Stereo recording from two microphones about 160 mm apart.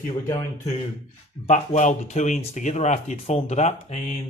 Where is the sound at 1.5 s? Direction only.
50° left (ahead or behind).